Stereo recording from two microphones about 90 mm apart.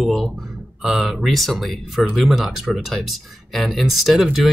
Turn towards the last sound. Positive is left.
turn(degrees=-5)  # may be behind; listen again after turning